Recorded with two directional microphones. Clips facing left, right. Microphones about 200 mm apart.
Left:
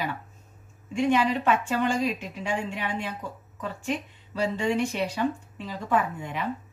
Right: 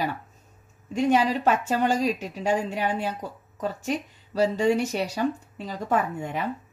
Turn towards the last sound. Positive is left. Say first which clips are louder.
# right 2 dB
turn(degrees=-40)  # may be behind; listen again after turning